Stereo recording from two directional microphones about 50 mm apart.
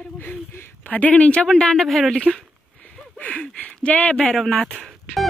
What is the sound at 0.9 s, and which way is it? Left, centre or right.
Speech, left.